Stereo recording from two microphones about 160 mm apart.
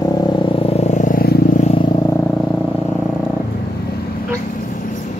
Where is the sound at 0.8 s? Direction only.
50° left (ahead or behind).